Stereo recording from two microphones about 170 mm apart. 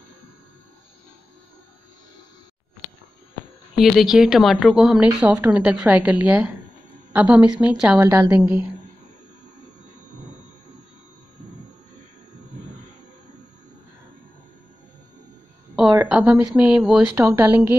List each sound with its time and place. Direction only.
3.7 s speech: centre (ahead or behind)
15.7 s a sound: 5° right (ahead or behind)
16.0 s speech: 10° right (ahead or behind)